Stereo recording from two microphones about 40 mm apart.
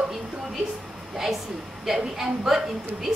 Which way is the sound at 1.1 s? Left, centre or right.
Centre.